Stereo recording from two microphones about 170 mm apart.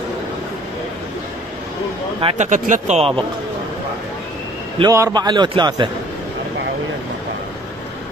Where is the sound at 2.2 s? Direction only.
35° right (ahead or behind).